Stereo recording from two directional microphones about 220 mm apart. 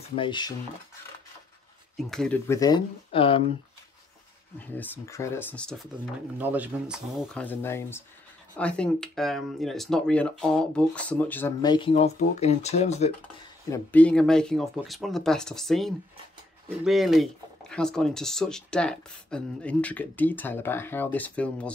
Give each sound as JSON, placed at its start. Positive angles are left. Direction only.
{"t": 0.1, "sound": "speech", "side_deg": 20}
{"t": 2.0, "sound": "speech", "side_deg": 0}
{"t": 4.6, "sound": "speech", "side_deg": 10}
{"t": 6.3, "sound": "speech", "side_deg": -10}
{"t": 7.3, "sound": "speech", "side_deg": 10}
{"t": 13.7, "sound": "speech", "side_deg": 5}